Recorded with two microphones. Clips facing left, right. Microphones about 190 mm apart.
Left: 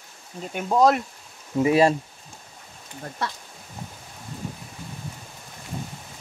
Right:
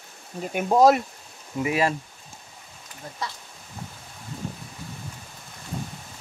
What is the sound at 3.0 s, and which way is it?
Speech, 60° left (ahead or behind).